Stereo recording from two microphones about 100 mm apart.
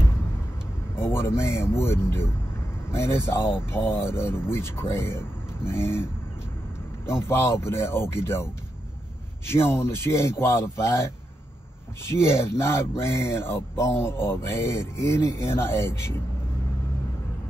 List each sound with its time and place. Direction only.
0.9 s speech: 25° left (ahead or behind)
7.1 s speech: 25° left (ahead or behind)
9.5 s speech: 25° left (ahead or behind)
12.1 s speech: 25° left (ahead or behind)